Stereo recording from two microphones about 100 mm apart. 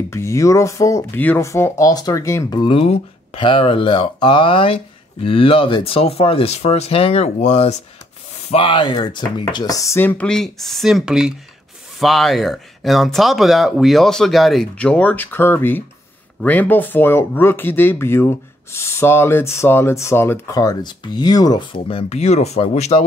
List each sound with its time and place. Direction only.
0.1 s speech: 30° left (ahead or behind)
1.1 s speech: 20° left (ahead or behind)
1.4 s speech: 30° left (ahead or behind)
2.7 s speech: 80° left
8.5 s speech: 60° left (ahead or behind)
9.8 s speech: 25° left (ahead or behind)
10.2 s speech: 5° left (ahead or behind)
14.8 s speech: 10° left (ahead or behind)
20.5 s speech: 40° left (ahead or behind)
21.7 s speech: 60° left (ahead or behind); by 23.0 s 90° left